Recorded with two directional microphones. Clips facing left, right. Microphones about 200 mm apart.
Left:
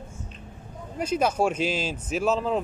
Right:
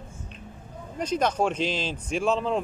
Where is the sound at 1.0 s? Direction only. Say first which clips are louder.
Left 1 dB; 5° left (ahead or behind).